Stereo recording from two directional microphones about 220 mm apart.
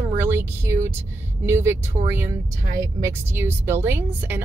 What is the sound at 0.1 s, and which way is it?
Speech, 10° right (ahead or behind).